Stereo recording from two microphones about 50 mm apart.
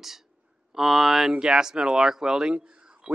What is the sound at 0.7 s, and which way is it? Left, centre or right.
Cutlery, centre.